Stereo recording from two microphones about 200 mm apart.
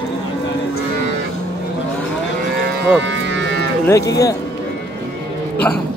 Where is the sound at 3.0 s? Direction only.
65° right (ahead or behind).